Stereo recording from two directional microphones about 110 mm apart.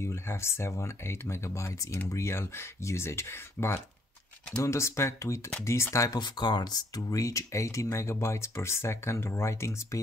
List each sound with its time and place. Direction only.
0.0 s speech: 25° left (ahead or behind)
6.1 s speech: 40° left (ahead or behind); by 9.9 s 25° left (ahead or behind)